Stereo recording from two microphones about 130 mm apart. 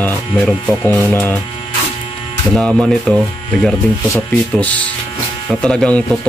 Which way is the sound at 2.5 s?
5° left (ahead or behind).